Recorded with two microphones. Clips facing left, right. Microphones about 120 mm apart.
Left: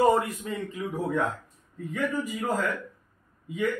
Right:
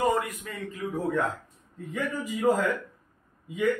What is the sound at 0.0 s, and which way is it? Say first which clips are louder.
Speech: left 4 dB; 30° left (ahead or behind).